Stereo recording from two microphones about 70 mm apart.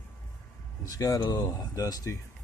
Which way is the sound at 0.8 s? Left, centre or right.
Left.